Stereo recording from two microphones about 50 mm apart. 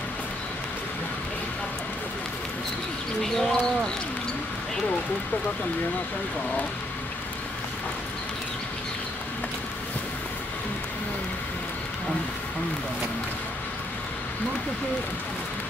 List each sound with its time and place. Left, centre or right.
3.2 s speech: centre